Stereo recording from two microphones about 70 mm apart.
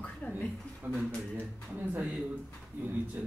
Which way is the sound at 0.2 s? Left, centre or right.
Left.